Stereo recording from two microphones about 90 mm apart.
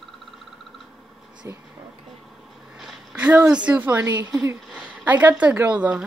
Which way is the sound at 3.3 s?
15° right (ahead or behind).